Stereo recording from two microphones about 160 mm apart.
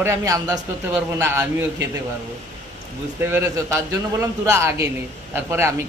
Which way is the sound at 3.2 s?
15° right (ahead or behind).